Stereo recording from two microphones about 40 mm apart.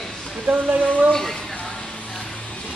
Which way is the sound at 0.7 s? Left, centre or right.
Right.